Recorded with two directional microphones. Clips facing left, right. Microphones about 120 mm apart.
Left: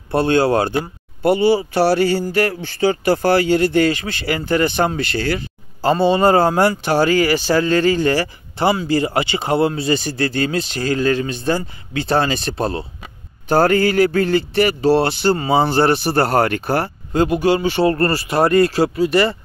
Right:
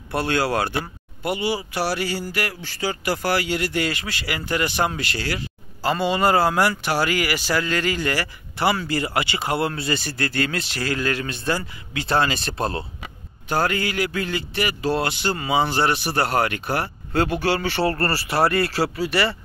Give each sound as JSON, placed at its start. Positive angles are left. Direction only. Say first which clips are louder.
{"t": 0.1, "sound": "a man's voice", "louder": "left 7 dB", "side_deg": 25}
{"t": 13.5, "sound": "a man's voice", "louder": "left 9 dB", "side_deg": 40}
{"t": 17.1, "sound": "speech", "louder": "left 6 dB", "side_deg": 15}